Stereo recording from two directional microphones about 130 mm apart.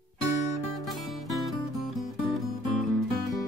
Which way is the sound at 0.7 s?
Centre (ahead or behind).